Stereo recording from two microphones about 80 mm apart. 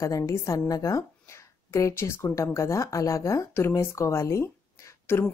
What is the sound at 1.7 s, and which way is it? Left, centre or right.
A woman's voice, left.